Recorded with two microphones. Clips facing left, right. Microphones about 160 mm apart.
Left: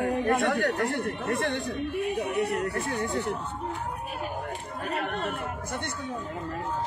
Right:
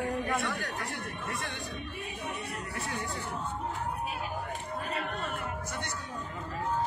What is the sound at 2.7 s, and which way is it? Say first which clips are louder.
Speech: left 8 dB; 55° left (ahead or behind).